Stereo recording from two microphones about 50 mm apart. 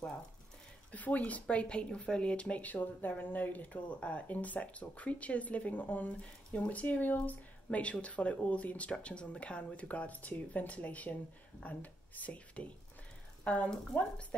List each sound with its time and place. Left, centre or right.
0.9 s speech: left